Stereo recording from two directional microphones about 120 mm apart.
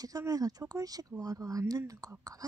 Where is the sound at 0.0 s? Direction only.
30° right (ahead or behind).